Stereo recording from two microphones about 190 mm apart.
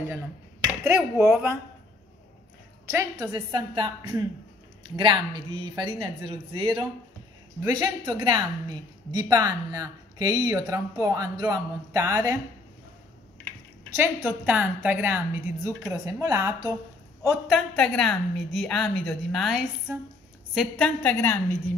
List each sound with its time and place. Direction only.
0.8 s a woman's voice: 15° right (ahead or behind)
2.9 s a woman's voice: 15° right (ahead or behind)
13.9 s a woman's voice: 10° right (ahead or behind)
17.3 s a woman's voice: centre (ahead or behind)